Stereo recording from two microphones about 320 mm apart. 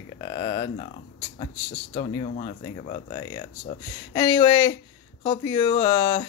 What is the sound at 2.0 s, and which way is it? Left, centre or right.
Speech, centre.